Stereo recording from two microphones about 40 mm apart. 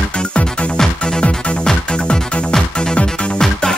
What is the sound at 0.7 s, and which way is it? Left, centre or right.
Music, centre.